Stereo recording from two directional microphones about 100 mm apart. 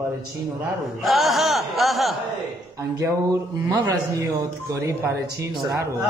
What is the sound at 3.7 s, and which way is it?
Speech, 35° right (ahead or behind).